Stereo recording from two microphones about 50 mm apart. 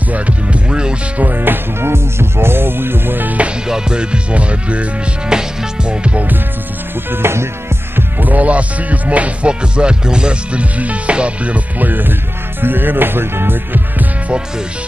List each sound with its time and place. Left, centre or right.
0.1 s music: right
1.2 s music: right
3.6 s music: centre
7.1 s music: right
8.2 s music: right